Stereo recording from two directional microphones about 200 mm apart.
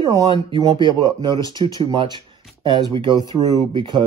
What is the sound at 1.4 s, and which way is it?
Speech, 20° left (ahead or behind).